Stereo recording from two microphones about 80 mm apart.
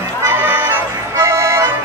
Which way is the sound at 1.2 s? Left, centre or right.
Right.